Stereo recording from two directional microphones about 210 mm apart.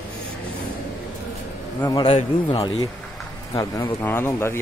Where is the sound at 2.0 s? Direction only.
25° left (ahead or behind).